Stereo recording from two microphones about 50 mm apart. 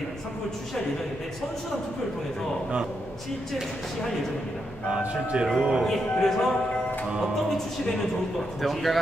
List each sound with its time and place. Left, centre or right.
4.8 s speech: centre
5.6 s speech: centre
5.9 s speech: centre
8.5 s speech: centre